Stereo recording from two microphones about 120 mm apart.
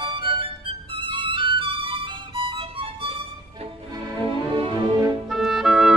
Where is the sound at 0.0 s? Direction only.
45° right (ahead or behind).